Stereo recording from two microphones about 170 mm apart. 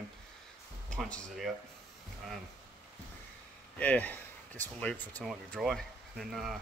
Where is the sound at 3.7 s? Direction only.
10° left (ahead or behind).